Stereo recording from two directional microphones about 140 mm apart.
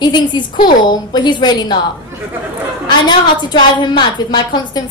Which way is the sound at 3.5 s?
35° left (ahead or behind).